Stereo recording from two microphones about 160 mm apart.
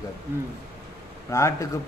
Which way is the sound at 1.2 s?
20° left (ahead or behind).